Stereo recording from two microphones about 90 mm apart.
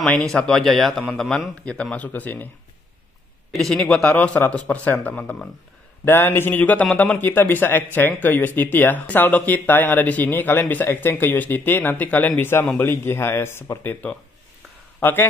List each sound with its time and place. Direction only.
0.0 s a man's voice: 5° left (ahead or behind)
3.5 s a man's voice: 5° left (ahead or behind); by 15.2 s 25° left (ahead or behind)